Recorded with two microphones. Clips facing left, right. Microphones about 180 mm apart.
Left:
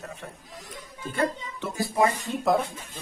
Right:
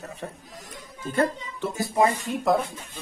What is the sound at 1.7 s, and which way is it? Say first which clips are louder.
Speech: right 1 dB; 20° right (ahead or behind).